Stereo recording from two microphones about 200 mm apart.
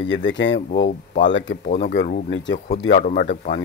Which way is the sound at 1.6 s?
35° left (ahead or behind).